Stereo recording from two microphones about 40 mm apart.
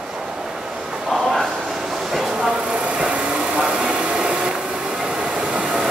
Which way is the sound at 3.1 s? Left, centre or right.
Right.